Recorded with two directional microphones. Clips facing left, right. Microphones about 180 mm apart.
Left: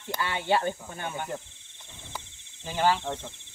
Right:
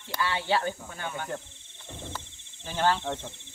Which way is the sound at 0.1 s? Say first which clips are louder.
Left 1 dB; 20° left (ahead or behind).